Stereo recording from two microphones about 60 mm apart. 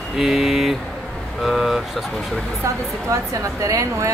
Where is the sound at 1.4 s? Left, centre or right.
Centre.